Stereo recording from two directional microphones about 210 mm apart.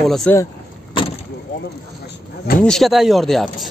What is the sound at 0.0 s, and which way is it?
Speech, centre (ahead or behind).